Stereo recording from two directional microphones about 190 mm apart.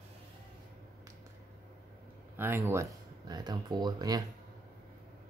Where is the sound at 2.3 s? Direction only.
10° right (ahead or behind).